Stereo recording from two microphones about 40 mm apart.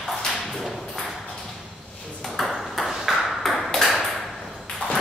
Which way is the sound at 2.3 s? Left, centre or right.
Centre.